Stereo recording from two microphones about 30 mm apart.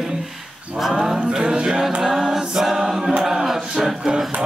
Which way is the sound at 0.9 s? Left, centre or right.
Centre.